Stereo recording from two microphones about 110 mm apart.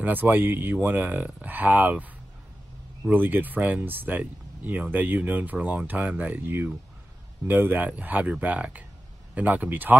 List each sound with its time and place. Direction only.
0.0 s speech: 15° right (ahead or behind)
3.1 s speech: 15° right (ahead or behind)